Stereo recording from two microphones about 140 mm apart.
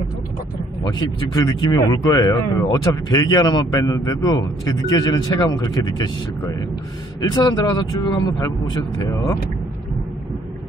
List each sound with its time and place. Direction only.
0.9 s speech: 25° left (ahead or behind)